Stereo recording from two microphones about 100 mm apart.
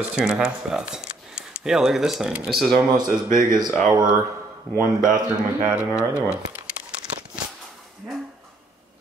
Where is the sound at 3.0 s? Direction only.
45° right (ahead or behind).